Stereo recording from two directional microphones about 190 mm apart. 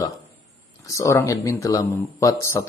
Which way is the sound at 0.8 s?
15° left (ahead or behind).